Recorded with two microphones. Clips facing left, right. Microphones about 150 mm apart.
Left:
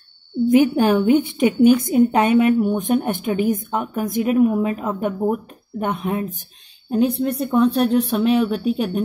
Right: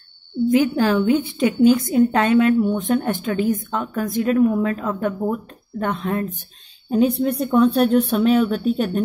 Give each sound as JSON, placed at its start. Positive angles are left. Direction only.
{"t": 0.5, "sound": "a woman's voice", "side_deg": 20}
{"t": 6.9, "sound": "speech", "side_deg": 0}